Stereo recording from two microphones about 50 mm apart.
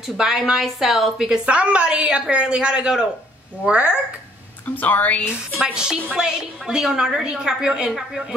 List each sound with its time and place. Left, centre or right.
0.0 s a woman's voice: centre
1.4 s a man's voice: right
4.6 s a woman's voice: left
5.6 s a woman's voice: centre